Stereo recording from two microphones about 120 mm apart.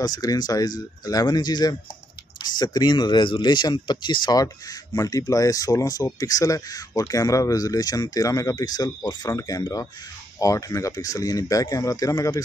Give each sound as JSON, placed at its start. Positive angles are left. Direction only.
{"t": 0.0, "sound": "speech", "side_deg": 30}